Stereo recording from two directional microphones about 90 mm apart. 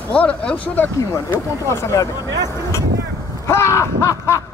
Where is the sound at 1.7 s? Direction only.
35° left (ahead or behind).